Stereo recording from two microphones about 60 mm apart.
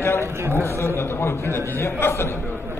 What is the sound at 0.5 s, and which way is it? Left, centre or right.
A man's voice, left.